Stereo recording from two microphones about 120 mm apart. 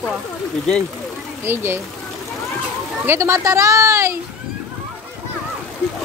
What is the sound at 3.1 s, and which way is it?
Speech, 25° right (ahead or behind).